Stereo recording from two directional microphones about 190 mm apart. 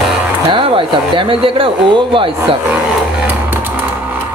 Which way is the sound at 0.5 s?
25° right (ahead or behind).